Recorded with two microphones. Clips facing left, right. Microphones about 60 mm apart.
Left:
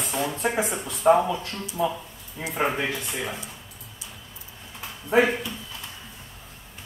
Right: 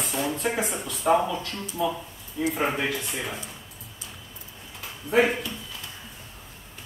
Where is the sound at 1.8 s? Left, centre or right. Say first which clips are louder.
Left 1 dB; left.